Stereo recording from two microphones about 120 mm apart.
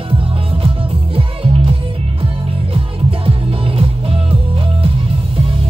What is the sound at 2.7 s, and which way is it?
Music, 50° right (ahead or behind).